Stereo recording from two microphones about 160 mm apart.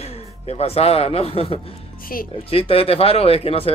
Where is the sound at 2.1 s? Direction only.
65° left (ahead or behind).